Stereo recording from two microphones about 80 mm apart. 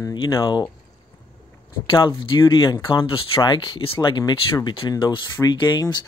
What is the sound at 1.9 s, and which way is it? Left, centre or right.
Speech, left.